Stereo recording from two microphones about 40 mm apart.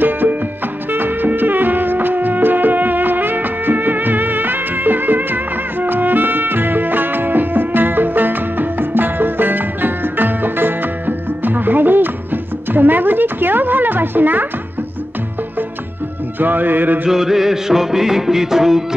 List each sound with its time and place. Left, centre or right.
0.0 s music: right
16.3 s music: right
17.1 s music: centre